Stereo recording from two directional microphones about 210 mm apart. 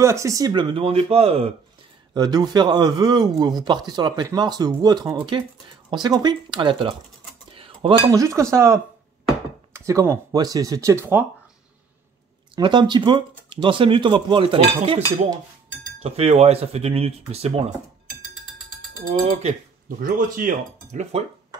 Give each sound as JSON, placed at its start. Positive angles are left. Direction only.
{"t": 0.0, "sound": "speech", "side_deg": -15}
{"t": 12.5, "sound": "speech", "side_deg": -20}
{"t": 18.9, "sound": "speech", "side_deg": -30}